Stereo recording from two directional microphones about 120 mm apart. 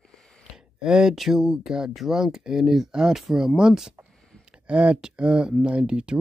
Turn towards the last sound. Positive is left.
turn(degrees=-10)  # may be behind; listen again after turning